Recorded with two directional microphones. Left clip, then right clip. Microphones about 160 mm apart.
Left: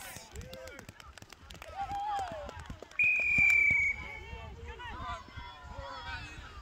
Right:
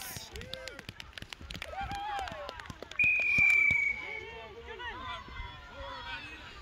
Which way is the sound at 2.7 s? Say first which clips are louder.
Right 1 dB; 80° left.